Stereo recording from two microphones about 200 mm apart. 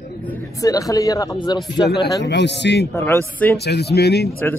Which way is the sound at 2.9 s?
10° left (ahead or behind).